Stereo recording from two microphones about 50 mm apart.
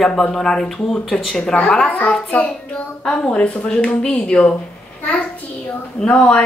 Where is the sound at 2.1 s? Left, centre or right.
Left.